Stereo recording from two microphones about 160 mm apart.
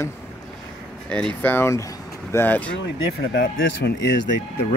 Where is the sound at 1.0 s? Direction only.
5° left (ahead or behind).